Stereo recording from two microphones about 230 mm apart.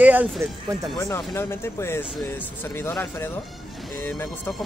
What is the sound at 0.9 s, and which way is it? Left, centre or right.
Speech, centre.